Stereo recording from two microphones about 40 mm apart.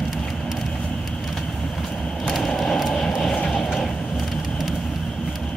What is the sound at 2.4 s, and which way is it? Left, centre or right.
Train, centre.